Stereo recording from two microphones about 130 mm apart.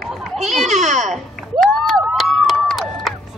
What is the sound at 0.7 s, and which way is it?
Speech, 65° right (ahead or behind).